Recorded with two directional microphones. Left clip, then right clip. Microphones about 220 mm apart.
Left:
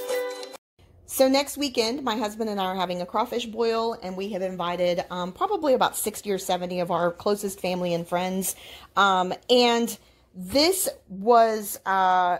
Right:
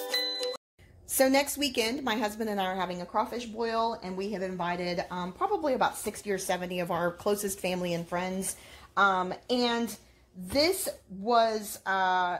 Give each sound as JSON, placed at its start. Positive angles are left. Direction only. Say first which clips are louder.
{"t": 1.1, "sound": "a woman's voice", "louder": "left 4 dB", "side_deg": 25}
{"t": 7.9, "sound": "a woman's voice", "louder": "left 6 dB", "side_deg": 40}